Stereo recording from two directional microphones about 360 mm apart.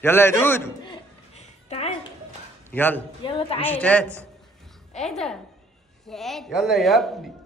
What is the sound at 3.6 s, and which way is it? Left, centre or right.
A woman's voice, centre.